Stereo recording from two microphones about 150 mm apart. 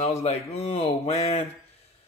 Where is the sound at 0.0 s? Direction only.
45° left (ahead or behind).